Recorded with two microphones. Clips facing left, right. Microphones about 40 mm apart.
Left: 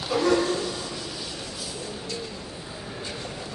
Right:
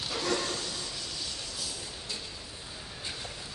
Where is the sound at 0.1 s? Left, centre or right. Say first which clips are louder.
Left 10 dB; centre.